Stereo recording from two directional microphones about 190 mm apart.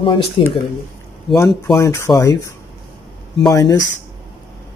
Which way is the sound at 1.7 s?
15° left (ahead or behind).